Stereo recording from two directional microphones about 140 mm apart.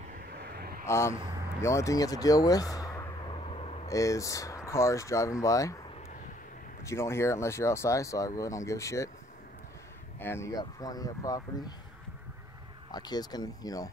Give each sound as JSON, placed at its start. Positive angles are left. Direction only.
{"t": 0.5, "sound": "vehicle", "side_deg": -90}
{"t": 0.8, "sound": "speech", "side_deg": 20}
{"t": 3.3, "sound": "vehicle", "side_deg": 40}
{"t": 3.8, "sound": "speech", "side_deg": 25}
{"t": 6.9, "sound": "speech", "side_deg": 20}
{"t": 10.2, "sound": "speech", "side_deg": 20}
{"t": 10.5, "sound": "speech", "side_deg": 30}
{"t": 12.9, "sound": "speech", "side_deg": 30}